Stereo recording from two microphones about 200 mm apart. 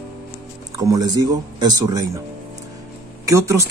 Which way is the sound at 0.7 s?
15° right (ahead or behind).